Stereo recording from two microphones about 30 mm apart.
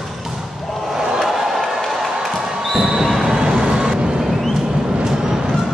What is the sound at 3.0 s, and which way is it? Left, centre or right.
Vehicle, centre.